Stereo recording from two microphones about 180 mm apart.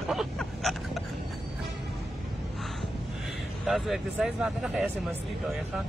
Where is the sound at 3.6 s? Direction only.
Centre (ahead or behind).